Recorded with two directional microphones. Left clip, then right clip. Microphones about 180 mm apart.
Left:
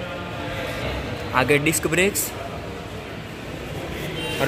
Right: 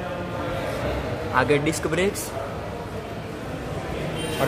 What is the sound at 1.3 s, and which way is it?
Speech, 15° left (ahead or behind).